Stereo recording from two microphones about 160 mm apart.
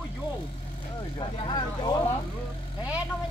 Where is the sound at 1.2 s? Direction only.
30° left (ahead or behind).